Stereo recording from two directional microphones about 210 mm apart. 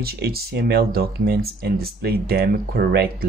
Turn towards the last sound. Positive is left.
turn(degrees=-45)  # may be behind; listen again after turning